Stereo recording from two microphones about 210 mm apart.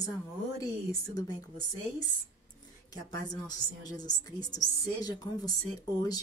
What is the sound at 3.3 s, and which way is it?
A woman's voice, 20° left (ahead or behind).